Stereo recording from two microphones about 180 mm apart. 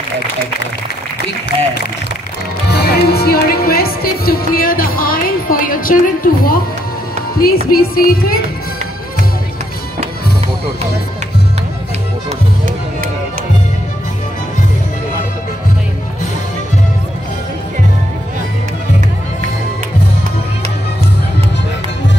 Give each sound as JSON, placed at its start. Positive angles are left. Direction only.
{"t": 2.7, "sound": "speech", "side_deg": 65}
{"t": 7.3, "sound": "music", "side_deg": 55}
{"t": 12.3, "sound": "music", "side_deg": -45}